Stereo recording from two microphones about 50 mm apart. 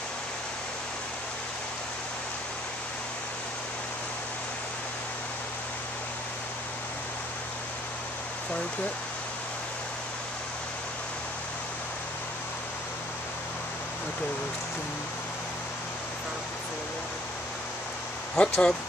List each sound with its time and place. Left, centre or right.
18.4 s speech: centre